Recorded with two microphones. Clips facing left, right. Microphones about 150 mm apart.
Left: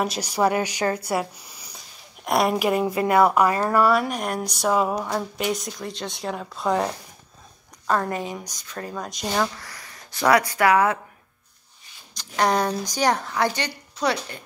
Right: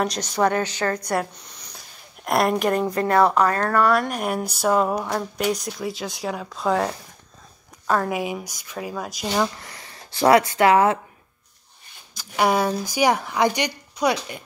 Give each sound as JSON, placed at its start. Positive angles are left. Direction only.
{"t": 0.0, "sound": "a woman's voice", "side_deg": 5}
{"t": 9.6, "sound": "speech", "side_deg": -25}
{"t": 12.2, "sound": "speech", "side_deg": -5}